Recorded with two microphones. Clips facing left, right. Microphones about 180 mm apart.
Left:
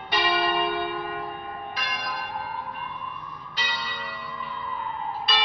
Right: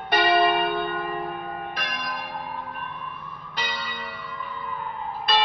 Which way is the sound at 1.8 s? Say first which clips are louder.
Right 1 dB; 50° right (ahead or behind).